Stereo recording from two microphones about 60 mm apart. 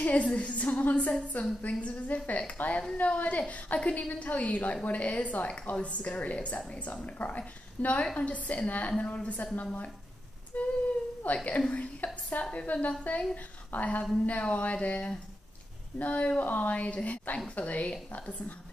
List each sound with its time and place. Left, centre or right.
0.0 s a woman's voice: left